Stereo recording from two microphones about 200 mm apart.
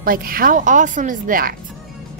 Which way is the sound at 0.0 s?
45° right (ahead or behind).